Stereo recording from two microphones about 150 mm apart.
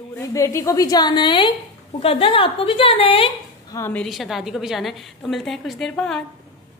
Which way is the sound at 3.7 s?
20° left (ahead or behind).